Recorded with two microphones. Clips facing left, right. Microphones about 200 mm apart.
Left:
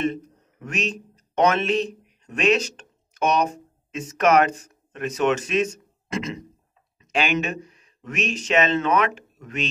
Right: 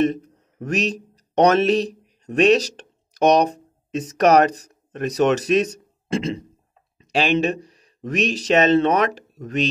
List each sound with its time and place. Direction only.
0.6 s speech: 40° right (ahead or behind)